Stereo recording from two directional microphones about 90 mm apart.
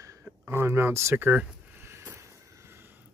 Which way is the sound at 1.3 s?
10° right (ahead or behind).